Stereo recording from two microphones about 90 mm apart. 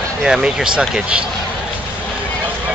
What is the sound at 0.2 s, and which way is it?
Speech, 10° right (ahead or behind).